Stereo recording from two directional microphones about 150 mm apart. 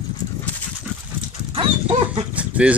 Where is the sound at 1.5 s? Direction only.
40° right (ahead or behind).